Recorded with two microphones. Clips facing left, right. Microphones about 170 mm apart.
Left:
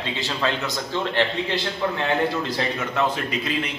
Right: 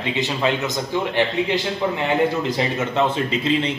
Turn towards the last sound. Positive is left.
turn(degrees=-25)  # may be behind; listen again after turning